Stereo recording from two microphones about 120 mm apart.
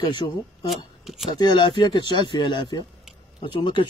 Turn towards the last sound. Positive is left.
turn(degrees=40)  # may be behind; listen again after turning